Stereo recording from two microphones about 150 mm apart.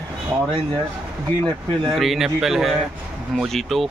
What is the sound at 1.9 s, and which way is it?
A man's voice, centre (ahead or behind).